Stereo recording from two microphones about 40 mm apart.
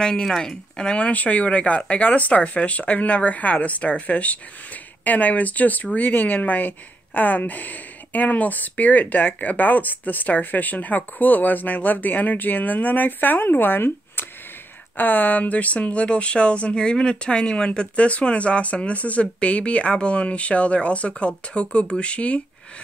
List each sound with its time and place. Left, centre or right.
0.0 s speech: centre
0.9 s speech: left
15.0 s speech: left